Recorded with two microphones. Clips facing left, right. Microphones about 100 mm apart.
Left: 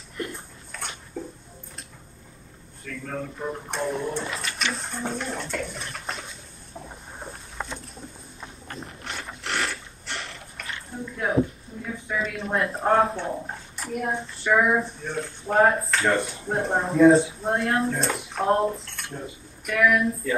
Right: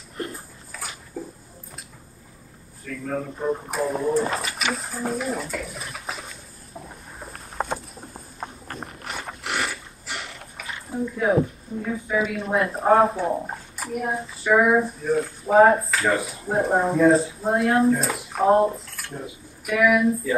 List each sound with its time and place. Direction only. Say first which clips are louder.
0.3 s bathtub: even; 5° right (ahead or behind)
2.8 s speech: right 4 dB; 5° right (ahead or behind)
6.7 s vehicle: even; 5° right (ahead or behind)
7.5 s a sound: right 8 dB; 40° right (ahead or behind)
9.4 s mechanisms: even; 5° right (ahead or behind)
12.1 s speech: right 3 dB; 5° right (ahead or behind)